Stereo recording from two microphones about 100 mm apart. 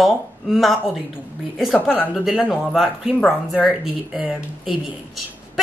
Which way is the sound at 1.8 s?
20° left (ahead or behind).